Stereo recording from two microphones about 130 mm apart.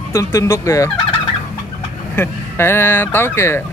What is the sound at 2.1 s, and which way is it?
Speech, 20° left (ahead or behind).